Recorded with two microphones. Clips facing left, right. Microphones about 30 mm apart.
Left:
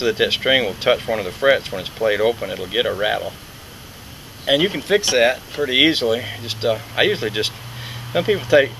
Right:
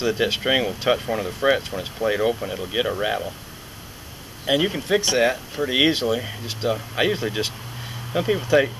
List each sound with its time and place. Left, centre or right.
0.0 s speech: left
4.5 s speech: left
6.4 s speech: left